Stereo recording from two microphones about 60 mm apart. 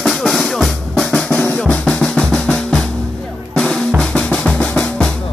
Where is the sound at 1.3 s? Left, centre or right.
Centre.